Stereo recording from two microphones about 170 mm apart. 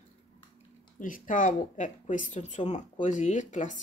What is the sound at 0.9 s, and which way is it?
Speech, 50° left (ahead or behind).